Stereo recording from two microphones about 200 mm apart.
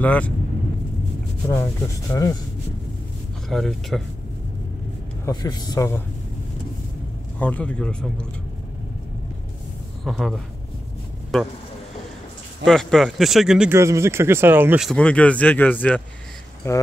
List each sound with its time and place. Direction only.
0.0 s speech: 5° left (ahead or behind)
1.5 s speech: 10° left (ahead or behind)
3.4 s speech: centre (ahead or behind)
5.2 s speech: 20° left (ahead or behind)
7.3 s speech: 10° left (ahead or behind)
10.0 s speech: centre (ahead or behind)
12.6 s speech: centre (ahead or behind)
14.9 s speech: 5° left (ahead or behind)